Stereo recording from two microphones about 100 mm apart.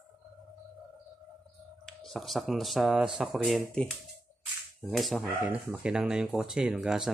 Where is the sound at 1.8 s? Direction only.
5° left (ahead or behind).